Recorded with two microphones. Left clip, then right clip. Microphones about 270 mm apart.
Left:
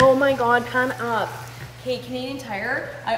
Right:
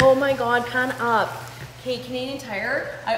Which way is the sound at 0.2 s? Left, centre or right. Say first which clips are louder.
Left 2 dB; centre.